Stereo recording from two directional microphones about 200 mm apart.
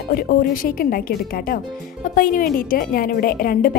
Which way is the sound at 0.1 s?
50° left (ahead or behind).